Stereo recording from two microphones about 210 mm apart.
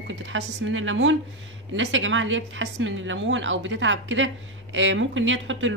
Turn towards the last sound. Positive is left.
turn(degrees=-65)  # may be behind; listen again after turning